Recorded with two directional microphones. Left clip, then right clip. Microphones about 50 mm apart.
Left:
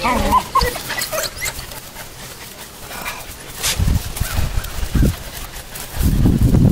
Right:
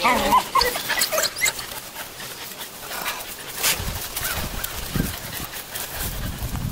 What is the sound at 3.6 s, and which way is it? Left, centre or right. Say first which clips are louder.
Dog: left 2 dB; centre.